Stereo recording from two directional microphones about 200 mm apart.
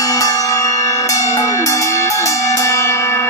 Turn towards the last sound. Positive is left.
turn(degrees=15)  # may be behind; listen again after turning